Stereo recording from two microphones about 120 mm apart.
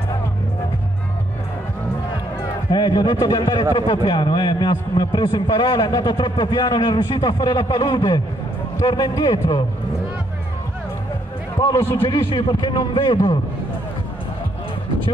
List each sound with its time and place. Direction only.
2.7 s a man's voice: 35° left (ahead or behind)
11.6 s a man's voice: 20° left (ahead or behind)
12.1 s a man's voice: 45° left (ahead or behind)